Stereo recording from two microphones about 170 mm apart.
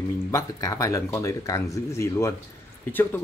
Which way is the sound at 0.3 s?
20° left (ahead or behind).